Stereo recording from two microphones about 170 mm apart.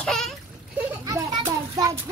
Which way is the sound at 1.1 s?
20° right (ahead or behind).